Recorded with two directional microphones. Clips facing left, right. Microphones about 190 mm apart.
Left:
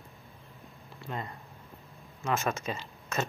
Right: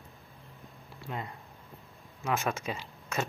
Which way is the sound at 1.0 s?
10° right (ahead or behind).